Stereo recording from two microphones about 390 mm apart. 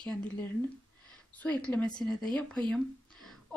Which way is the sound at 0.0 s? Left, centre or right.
Centre.